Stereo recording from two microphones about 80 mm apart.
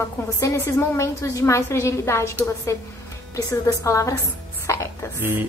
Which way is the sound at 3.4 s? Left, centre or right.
Left.